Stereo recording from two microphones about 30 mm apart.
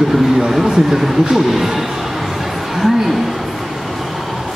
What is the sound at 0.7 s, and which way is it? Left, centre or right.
Speech, centre.